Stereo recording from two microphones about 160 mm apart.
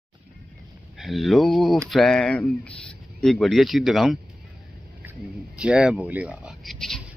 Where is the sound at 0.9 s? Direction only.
Centre (ahead or behind).